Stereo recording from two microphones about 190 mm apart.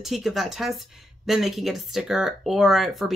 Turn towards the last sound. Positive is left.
turn(degrees=0)  # may be behind; listen again after turning